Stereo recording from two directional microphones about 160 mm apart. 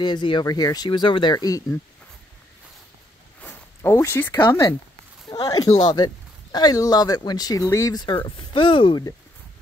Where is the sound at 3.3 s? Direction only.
15° left (ahead or behind).